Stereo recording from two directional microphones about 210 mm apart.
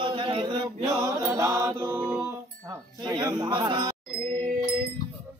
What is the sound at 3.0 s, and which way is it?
Speech, 20° right (ahead or behind).